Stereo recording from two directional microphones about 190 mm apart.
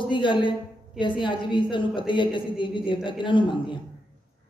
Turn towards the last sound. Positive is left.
turn(degrees=25)  # may be behind; listen again after turning